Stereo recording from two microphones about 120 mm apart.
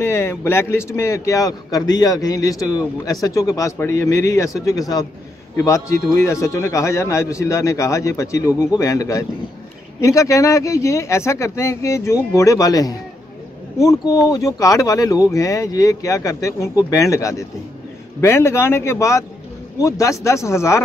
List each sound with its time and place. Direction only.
0.0 s a man's voice: 20° left (ahead or behind)
6.1 s a man's voice: 25° left (ahead or behind)